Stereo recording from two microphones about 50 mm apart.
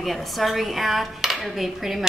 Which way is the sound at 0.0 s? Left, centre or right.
Centre.